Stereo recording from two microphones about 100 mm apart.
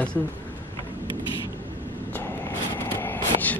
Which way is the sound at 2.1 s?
20° left (ahead or behind).